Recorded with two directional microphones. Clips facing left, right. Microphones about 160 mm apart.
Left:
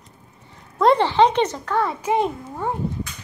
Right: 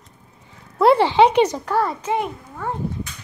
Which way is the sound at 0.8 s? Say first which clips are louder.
Right 2 dB; 10° right (ahead or behind).